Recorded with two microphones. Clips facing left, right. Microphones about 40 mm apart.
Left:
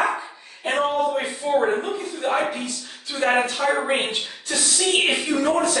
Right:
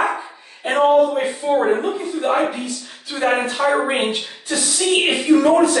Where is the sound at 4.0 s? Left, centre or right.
Centre.